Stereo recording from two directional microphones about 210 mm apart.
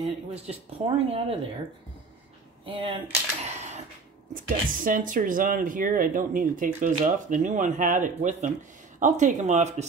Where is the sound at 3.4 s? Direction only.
30° right (ahead or behind).